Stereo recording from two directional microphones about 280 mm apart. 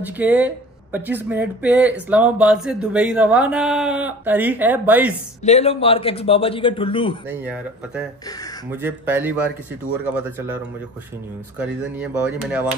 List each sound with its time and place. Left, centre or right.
0.0 s a man's voice: centre
5.4 s a man's voice: left
7.2 s a man's voice: centre